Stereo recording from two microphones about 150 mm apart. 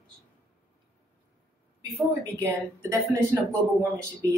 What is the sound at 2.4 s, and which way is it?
Speech, 15° right (ahead or behind).